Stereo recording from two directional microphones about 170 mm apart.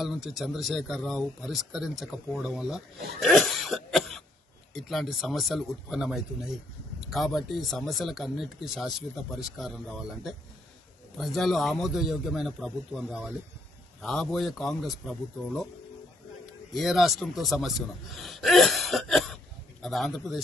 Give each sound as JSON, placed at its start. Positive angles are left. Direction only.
{"t": 0.0, "sound": "speech", "side_deg": 0}
{"t": 3.2, "sound": "cough", "side_deg": 0}
{"t": 4.7, "sound": "speech", "side_deg": 0}
{"t": 16.7, "sound": "speech", "side_deg": 0}